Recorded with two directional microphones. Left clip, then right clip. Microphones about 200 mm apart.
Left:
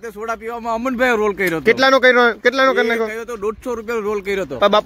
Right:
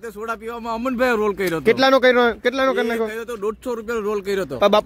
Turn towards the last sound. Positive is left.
turn(degrees=-10)  # may be behind; listen again after turning